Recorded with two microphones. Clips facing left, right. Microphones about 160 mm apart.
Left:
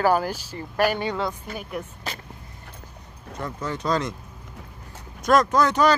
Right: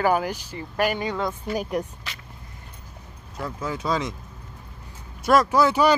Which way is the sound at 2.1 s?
45° left (ahead or behind).